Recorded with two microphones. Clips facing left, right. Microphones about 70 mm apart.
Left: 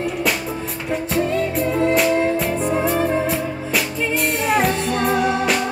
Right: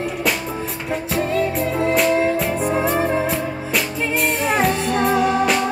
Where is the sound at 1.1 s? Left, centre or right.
Centre.